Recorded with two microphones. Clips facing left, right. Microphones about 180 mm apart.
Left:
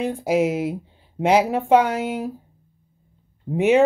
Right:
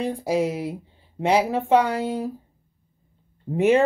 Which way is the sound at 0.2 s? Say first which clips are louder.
Left 5 dB; 20° left (ahead or behind).